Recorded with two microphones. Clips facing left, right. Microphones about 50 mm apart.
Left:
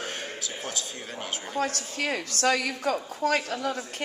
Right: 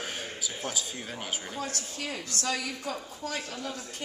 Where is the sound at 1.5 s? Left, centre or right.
Left.